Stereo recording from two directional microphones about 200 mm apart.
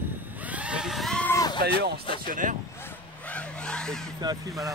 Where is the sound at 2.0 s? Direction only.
25° left (ahead or behind).